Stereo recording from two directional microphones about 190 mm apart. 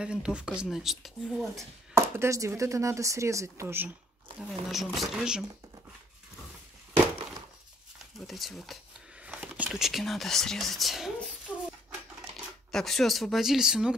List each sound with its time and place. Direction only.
0.0 s speech: 5° right (ahead or behind)
1.6 s speech: 15° right (ahead or behind)
4.4 s speech: centre (ahead or behind)
8.3 s speech: centre (ahead or behind)
12.7 s speech: centre (ahead or behind)